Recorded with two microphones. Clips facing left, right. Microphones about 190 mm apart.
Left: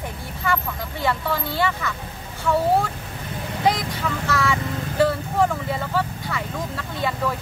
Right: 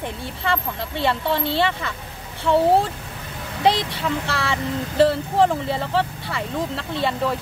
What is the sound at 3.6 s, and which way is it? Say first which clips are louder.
Speech: right 2 dB; 30° right (ahead or behind).